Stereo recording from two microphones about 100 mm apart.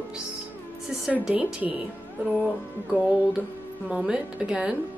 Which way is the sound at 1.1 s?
15° right (ahead or behind).